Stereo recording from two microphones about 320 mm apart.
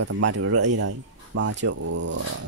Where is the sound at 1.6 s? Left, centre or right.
Right.